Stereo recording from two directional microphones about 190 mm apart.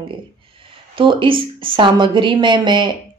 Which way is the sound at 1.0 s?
25° right (ahead or behind).